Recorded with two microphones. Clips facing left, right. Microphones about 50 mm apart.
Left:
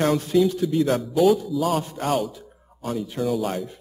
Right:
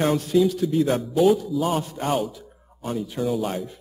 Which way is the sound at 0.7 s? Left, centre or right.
Centre.